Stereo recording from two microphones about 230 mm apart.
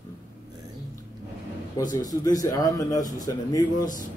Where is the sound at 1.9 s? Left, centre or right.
Centre.